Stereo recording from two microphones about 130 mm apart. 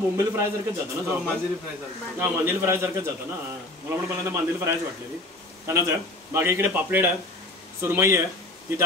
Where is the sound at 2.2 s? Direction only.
20° right (ahead or behind).